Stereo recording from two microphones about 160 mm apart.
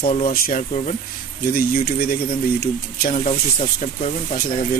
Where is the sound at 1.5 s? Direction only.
65° left (ahead or behind).